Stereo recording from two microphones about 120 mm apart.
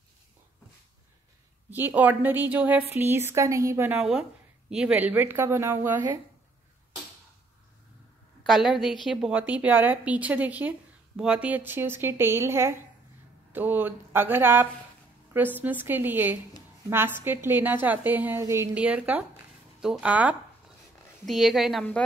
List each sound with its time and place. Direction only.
1.7 s a woman's voice: 15° right (ahead or behind)
4.0 s a woman's voice: 5° right (ahead or behind)
8.5 s a woman's voice: centre (ahead or behind); by 18.7 s 20° right (ahead or behind)
18.8 s a woman's voice: 10° right (ahead or behind)